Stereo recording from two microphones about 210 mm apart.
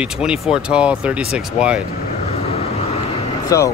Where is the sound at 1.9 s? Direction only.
30° left (ahead or behind).